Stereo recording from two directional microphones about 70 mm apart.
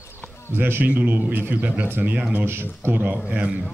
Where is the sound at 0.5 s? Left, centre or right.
Right.